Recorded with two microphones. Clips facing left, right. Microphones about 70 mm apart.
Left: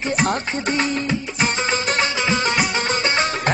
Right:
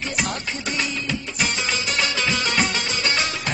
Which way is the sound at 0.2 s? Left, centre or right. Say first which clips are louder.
Left 5 dB; left.